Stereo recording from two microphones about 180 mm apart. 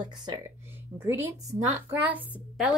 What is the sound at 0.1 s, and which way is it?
Speech, 25° right (ahead or behind).